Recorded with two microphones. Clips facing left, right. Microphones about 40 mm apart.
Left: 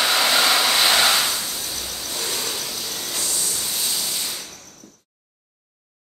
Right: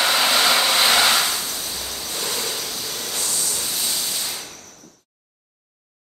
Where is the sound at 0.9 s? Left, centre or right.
Right.